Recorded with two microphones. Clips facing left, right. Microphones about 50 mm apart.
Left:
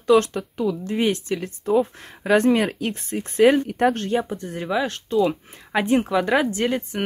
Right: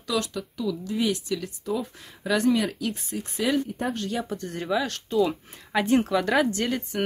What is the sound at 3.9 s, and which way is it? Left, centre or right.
Speech, left.